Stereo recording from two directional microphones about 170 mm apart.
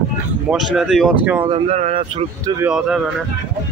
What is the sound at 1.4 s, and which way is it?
Speech, 35° right (ahead or behind).